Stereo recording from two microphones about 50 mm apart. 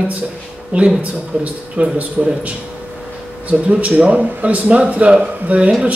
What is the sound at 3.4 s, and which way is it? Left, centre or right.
Speech, right.